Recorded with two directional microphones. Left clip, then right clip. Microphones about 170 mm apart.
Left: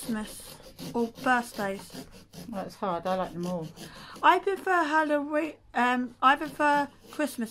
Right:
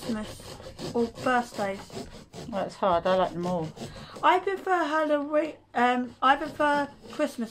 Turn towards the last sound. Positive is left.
turn(degrees=25)  # may be behind; listen again after turning